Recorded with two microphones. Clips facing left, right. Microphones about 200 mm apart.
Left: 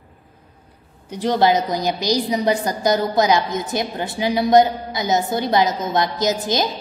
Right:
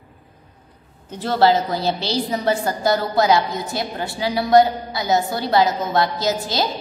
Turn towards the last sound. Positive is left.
turn(degrees=20)  # may be behind; listen again after turning